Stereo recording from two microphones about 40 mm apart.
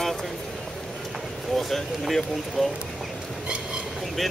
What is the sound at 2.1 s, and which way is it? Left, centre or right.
Speech, centre.